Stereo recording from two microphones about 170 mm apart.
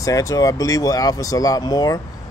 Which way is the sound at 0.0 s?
20° left (ahead or behind).